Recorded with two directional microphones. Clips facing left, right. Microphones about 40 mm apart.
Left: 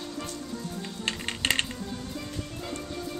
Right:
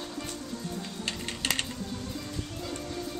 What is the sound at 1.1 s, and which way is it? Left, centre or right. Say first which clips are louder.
Music: left 4 dB; left.